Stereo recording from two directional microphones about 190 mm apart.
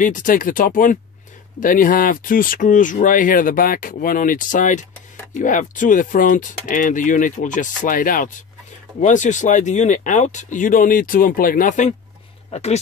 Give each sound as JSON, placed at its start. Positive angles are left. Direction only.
{"t": 0.0, "sound": "speech", "side_deg": 45}